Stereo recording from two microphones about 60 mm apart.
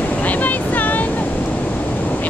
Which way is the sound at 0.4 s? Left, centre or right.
Left.